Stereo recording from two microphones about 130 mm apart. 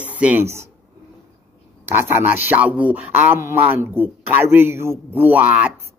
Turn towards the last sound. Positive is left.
turn(degrees=-10)  # may be behind; listen again after turning